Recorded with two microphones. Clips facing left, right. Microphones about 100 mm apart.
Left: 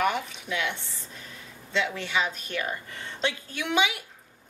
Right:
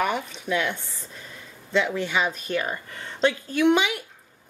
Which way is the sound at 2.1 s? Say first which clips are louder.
Right 1 dB; 40° right (ahead or behind).